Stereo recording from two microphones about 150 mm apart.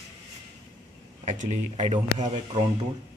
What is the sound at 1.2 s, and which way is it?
Speech, 50° right (ahead or behind).